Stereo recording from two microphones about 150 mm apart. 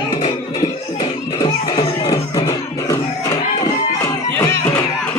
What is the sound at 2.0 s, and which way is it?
Music, 25° left (ahead or behind).